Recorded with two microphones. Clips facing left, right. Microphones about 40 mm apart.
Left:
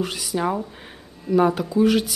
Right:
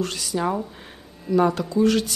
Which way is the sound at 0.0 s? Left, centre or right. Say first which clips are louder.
Left 1 dB; centre.